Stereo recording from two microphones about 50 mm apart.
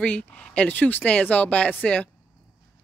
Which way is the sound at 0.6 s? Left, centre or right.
Left.